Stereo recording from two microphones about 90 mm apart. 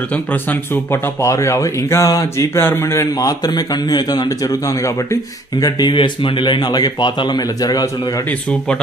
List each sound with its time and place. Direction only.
0.1 s speech: 15° left (ahead or behind)
1.2 s speech: 35° left (ahead or behind)
5.9 s speech: 75° left (ahead or behind); by 7.9 s 45° left (ahead or behind)
8.3 s speech: 10° left (ahead or behind)